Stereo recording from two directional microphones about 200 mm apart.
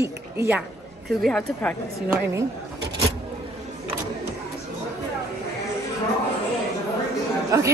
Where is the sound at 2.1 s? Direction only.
15° right (ahead or behind).